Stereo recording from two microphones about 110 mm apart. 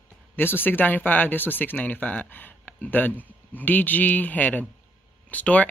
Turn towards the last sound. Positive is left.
turn(degrees=15)  # may be behind; listen again after turning